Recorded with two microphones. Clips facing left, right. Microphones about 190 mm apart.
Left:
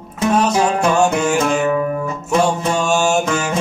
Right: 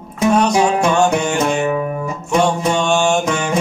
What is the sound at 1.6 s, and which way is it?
Music, 20° right (ahead or behind).